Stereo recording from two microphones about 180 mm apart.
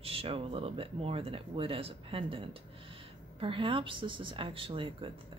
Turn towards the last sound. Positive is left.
turn(degrees=-30)  # may be behind; listen again after turning